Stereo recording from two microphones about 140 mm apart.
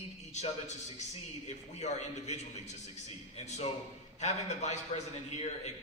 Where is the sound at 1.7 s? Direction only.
55° left (ahead or behind).